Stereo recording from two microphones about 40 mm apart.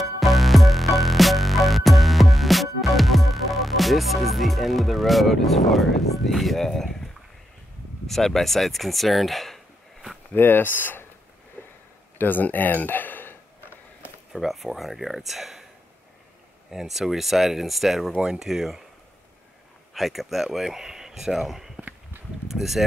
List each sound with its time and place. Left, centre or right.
0.0 s music: centre
8.1 s speech: centre
10.3 s speech: left
11.6 s a sound: left
14.3 s speech: centre
16.7 s speech: centre
18.1 s speech: right
18.5 s speech: centre
19.9 s speech: centre